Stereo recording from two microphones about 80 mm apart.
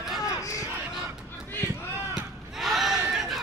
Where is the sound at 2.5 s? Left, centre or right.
Centre.